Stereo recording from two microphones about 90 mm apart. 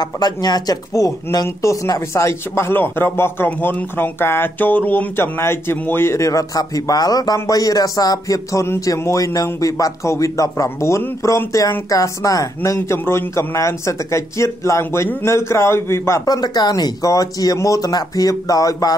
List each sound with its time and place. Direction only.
0.0 s speech: 50° left (ahead or behind); by 16.2 s 30° left (ahead or behind)
16.3 s speech: 50° left (ahead or behind)